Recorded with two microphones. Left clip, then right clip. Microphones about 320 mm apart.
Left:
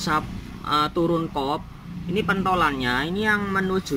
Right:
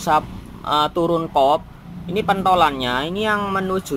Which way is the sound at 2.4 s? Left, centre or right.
Centre.